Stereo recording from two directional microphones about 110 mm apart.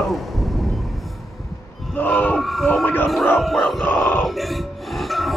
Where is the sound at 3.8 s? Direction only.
20° left (ahead or behind).